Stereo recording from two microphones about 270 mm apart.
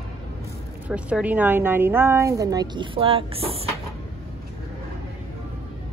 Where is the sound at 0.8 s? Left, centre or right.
Centre; by 3.5 s right.